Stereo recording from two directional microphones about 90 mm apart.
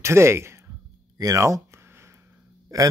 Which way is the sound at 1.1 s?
40° right (ahead or behind).